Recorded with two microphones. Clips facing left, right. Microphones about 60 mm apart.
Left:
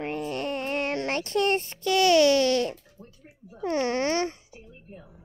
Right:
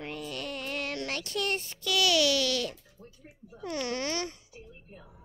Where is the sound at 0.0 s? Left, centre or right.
Left.